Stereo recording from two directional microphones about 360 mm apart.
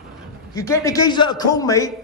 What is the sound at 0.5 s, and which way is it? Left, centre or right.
A man's voice, centre.